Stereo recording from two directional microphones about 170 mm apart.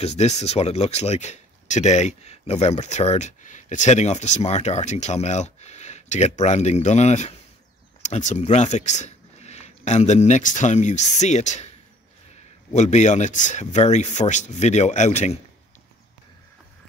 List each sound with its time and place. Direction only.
0.0 s speech: 40° left (ahead or behind)
12.7 s speech: 45° left (ahead or behind)